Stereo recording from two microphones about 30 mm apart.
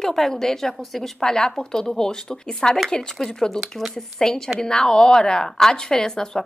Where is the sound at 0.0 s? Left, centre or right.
Centre.